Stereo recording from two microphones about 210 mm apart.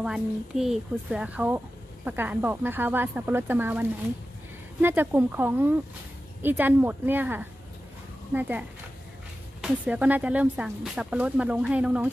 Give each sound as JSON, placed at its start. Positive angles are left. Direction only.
{"t": 0.0, "sound": "speech", "side_deg": 0}
{"t": 4.8, "sound": "speech", "side_deg": -10}